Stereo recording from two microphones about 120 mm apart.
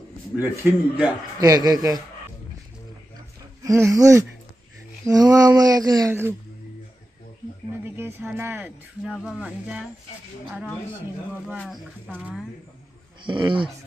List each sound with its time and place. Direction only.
0.4 s speech: 15° right (ahead or behind)
1.4 s a sound: 30° right (ahead or behind)
3.2 s a sound: 25° right (ahead or behind)
7.8 s speech: 20° right (ahead or behind)
9.0 s speech: 10° right (ahead or behind)
13.2 s speech: 45° right (ahead or behind)